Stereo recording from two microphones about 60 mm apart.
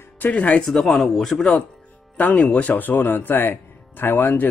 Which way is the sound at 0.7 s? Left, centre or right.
Centre.